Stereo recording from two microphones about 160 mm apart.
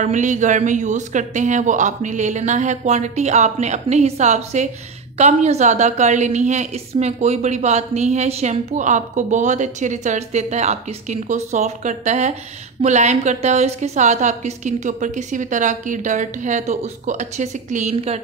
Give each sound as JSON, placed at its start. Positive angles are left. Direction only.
{"t": 0.0, "sound": "a woman's voice", "side_deg": -50}